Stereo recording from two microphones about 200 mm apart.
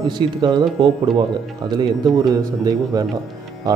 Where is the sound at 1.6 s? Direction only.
20° right (ahead or behind).